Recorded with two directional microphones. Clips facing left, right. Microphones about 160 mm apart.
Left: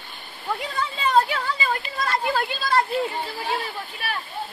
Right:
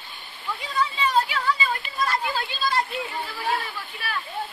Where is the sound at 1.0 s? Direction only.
45° left (ahead or behind).